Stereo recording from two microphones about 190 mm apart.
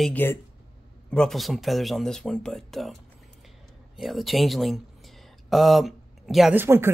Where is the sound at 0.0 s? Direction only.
10° left (ahead or behind).